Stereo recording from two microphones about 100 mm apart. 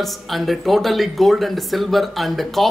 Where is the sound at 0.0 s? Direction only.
Centre (ahead or behind).